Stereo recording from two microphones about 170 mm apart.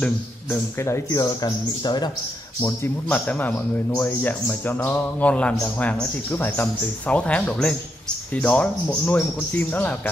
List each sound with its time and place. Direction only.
0.0 s a man's voice: 15° left (ahead or behind)
2.6 s a man's voice: 10° left (ahead or behind)